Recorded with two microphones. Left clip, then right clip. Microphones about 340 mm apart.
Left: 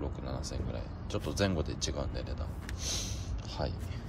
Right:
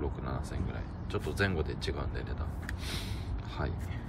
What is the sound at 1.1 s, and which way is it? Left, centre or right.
Speech, centre.